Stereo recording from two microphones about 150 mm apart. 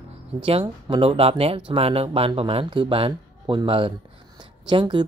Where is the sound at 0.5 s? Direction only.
35° right (ahead or behind).